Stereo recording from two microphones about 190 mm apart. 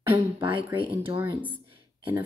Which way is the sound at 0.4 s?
25° right (ahead or behind).